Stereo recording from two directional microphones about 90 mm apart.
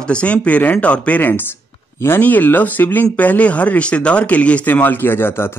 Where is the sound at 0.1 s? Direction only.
15° left (ahead or behind).